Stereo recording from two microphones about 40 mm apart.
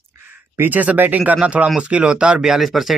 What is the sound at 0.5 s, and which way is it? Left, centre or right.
Speech, right.